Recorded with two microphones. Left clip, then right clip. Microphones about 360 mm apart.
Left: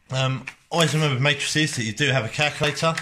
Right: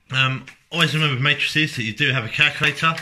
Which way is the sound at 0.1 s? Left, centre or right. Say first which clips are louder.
Right 6 dB; centre.